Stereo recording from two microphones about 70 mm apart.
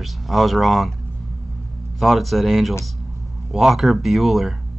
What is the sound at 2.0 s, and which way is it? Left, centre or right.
Speech, centre.